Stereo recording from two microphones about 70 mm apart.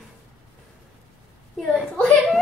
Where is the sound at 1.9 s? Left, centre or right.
Centre.